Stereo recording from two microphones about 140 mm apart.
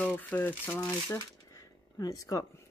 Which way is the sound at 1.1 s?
25° left (ahead or behind).